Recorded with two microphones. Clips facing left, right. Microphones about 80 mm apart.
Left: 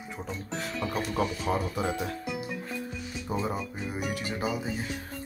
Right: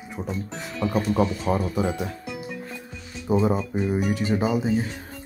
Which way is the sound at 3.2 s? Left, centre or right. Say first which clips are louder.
Right 10 dB; centre.